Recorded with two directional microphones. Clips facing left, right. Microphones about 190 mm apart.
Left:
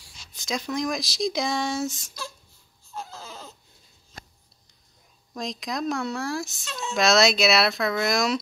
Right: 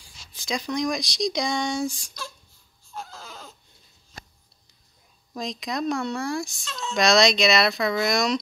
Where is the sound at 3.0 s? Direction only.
5° left (ahead or behind).